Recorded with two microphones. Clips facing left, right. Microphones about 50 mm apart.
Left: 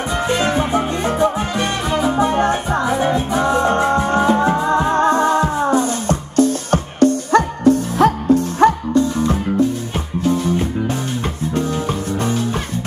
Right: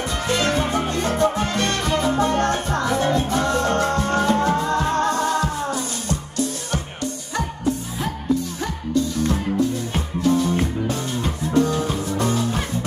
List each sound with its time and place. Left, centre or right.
0.3 s salsa music: centre; by 9.0 s left
9.3 s music: left